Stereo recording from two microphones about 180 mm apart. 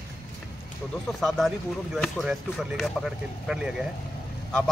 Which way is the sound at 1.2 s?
Centre (ahead or behind).